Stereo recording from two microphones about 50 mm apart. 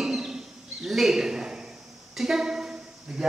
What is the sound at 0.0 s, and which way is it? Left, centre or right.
Bird, centre.